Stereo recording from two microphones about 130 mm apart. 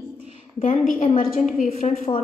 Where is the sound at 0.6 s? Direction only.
75° left (ahead or behind).